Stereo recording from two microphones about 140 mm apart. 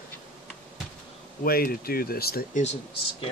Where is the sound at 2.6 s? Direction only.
50° left (ahead or behind).